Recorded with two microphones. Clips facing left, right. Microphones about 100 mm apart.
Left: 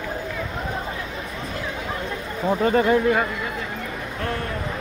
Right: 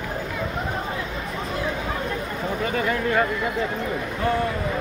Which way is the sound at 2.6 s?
35° left (ahead or behind).